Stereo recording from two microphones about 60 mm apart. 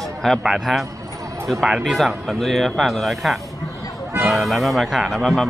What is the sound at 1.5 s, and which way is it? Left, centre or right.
Speech, centre.